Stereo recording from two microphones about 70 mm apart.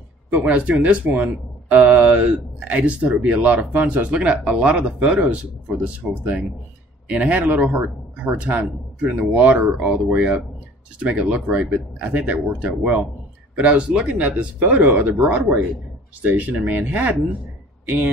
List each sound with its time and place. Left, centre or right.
0.3 s speech: right